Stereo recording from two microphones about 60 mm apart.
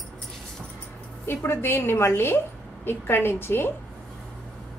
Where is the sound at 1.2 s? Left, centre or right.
Left.